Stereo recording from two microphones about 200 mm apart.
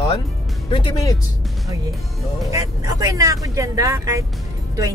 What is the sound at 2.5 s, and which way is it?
Speech, 15° right (ahead or behind).